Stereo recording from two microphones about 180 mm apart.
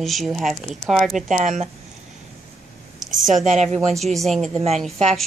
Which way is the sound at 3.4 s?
40° right (ahead or behind).